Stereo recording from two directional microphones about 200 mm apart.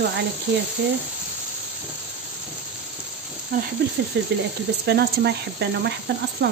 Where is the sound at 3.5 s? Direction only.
45° right (ahead or behind).